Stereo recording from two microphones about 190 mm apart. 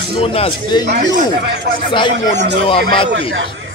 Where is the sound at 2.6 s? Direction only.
25° left (ahead or behind).